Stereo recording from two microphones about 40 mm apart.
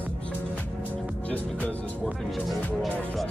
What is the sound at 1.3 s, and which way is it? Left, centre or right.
Speech, left.